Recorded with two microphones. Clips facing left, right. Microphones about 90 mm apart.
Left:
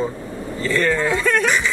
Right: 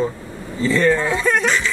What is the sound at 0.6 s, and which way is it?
Speech, 20° right (ahead or behind).